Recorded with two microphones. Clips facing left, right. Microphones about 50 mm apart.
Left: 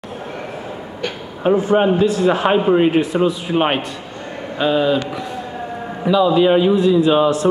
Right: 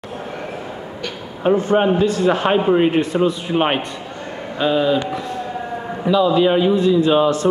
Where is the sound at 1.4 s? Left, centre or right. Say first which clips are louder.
Left 1 dB; centre.